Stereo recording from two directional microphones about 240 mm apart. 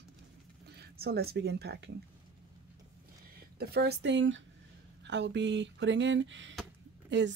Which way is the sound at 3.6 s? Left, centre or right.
Right.